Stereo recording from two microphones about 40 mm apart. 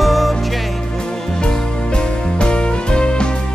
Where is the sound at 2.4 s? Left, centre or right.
Left.